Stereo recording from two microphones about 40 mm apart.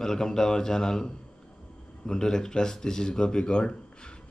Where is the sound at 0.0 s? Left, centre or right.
Centre.